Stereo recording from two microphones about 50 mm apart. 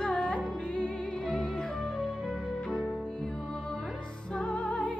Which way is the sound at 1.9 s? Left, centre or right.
Centre.